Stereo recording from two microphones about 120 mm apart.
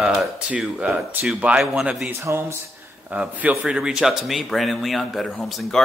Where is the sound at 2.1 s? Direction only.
20° right (ahead or behind).